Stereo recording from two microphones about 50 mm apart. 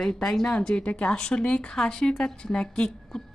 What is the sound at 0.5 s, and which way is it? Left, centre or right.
A woman's voice, left.